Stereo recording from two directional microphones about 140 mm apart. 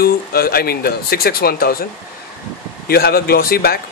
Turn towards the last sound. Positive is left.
turn(degrees=90)